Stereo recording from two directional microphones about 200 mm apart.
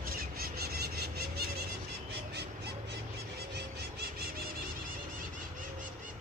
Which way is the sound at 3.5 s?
50° right (ahead or behind).